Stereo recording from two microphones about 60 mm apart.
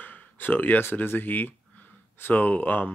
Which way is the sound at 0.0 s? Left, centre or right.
Left.